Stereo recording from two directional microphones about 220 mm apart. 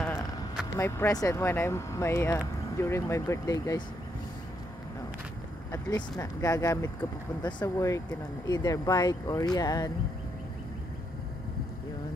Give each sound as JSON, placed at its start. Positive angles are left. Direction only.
{"t": 0.0, "sound": "speech", "side_deg": 5}
{"t": 5.7, "sound": "speech", "side_deg": 15}